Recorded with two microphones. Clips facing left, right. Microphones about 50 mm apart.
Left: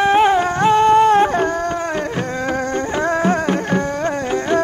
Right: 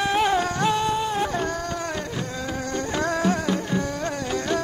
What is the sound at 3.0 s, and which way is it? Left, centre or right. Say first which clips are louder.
Music: left 6 dB; left.